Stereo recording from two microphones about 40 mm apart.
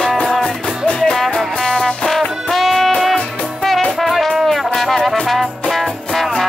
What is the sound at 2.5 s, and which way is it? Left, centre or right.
Music, centre.